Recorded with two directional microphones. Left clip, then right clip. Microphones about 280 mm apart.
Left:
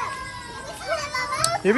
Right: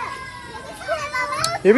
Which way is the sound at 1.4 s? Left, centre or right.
Centre.